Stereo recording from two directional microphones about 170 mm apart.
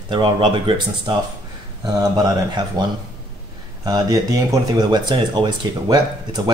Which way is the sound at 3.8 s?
20° right (ahead or behind).